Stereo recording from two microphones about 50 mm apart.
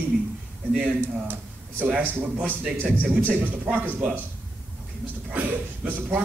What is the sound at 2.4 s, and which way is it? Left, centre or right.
A man's voice, right.